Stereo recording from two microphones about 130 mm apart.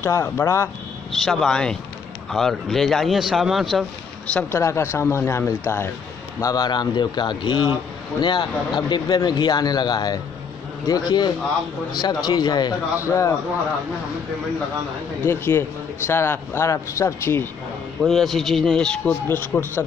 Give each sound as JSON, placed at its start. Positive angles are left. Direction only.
{"t": 0.0, "sound": "speech", "side_deg": 20}
{"t": 1.2, "sound": "speech", "side_deg": 0}
{"t": 4.3, "sound": "speech", "side_deg": 10}
{"t": 4.6, "sound": "speech", "side_deg": 20}
{"t": 6.4, "sound": "a man's voice", "side_deg": 30}
{"t": 15.2, "sound": "speech", "side_deg": 20}
{"t": 18.0, "sound": "speech", "side_deg": 0}